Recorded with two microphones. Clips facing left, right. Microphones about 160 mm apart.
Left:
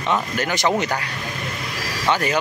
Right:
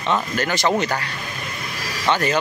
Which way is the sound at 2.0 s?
10° left (ahead or behind).